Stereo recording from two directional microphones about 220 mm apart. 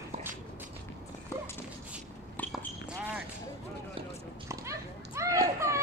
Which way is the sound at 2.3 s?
10° left (ahead or behind).